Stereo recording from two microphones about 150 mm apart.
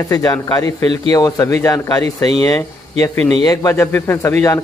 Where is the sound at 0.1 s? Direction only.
25° left (ahead or behind).